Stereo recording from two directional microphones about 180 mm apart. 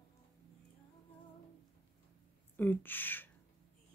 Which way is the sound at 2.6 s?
10° left (ahead or behind).